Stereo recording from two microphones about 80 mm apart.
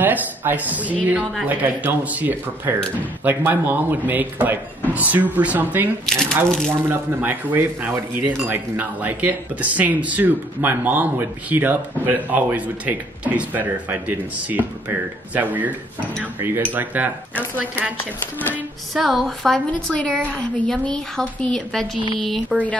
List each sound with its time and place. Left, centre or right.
0.0 s speech: right
6.0 s a woman's voice: centre
6.9 s speech: right
18.9 s a woman's voice: centre
19.9 s a woman's voice: centre